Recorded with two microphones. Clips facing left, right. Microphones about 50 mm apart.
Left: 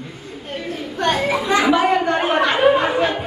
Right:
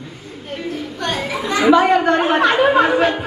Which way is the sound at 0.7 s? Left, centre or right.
Left.